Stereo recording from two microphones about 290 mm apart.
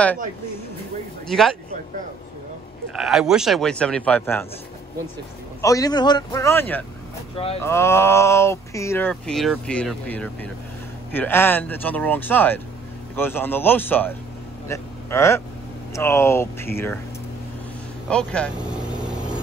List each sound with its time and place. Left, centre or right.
1.2 s a man's voice: centre
2.9 s a man's voice: centre
5.6 s speech: centre
18.1 s vehicle: centre